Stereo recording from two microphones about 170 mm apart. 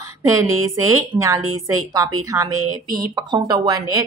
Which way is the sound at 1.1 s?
20° right (ahead or behind).